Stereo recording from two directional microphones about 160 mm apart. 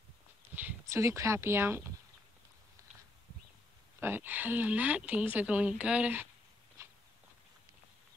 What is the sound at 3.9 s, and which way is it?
A woman's voice, 10° right (ahead or behind).